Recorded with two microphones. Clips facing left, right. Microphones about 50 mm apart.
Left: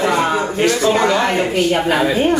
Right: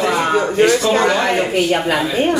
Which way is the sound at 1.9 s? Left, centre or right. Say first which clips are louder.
Left 3 dB; left.